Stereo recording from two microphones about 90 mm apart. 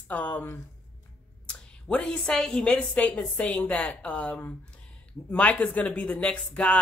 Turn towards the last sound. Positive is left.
turn(degrees=15)  # may be behind; listen again after turning